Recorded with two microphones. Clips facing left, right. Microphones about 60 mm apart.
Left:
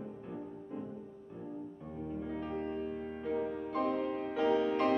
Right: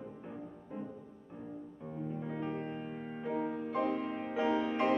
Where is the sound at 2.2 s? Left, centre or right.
Centre.